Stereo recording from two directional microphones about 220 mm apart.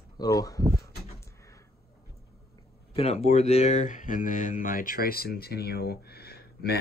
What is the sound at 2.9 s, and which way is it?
Speech, 30° left (ahead or behind).